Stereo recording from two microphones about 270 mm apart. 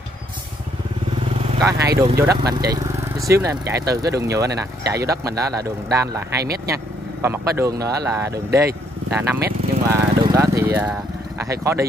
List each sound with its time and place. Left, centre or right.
1.5 s speech: centre
6.4 s speech: right
6.7 s speech: centre